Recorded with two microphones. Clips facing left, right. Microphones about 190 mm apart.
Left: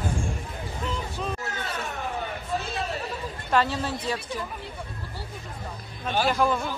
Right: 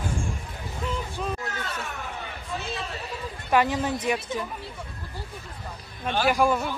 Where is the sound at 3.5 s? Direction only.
15° right (ahead or behind).